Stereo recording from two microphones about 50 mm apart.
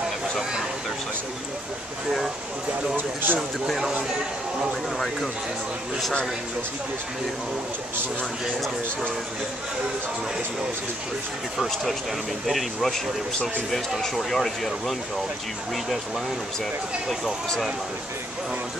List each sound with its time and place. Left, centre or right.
0.4 s vehicle: centre
3.0 s speech: right
3.3 s speech: centre
11.7 s speech: centre